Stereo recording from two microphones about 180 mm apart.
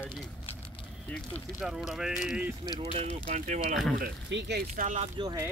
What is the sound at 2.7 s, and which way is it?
Speech, 35° right (ahead or behind).